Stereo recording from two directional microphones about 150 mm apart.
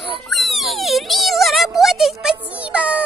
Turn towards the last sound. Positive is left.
turn(degrees=-10)  # may be behind; listen again after turning